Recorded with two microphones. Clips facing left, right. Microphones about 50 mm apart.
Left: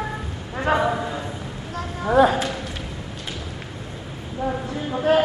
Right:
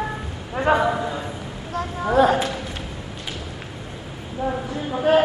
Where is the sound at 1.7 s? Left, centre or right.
Right.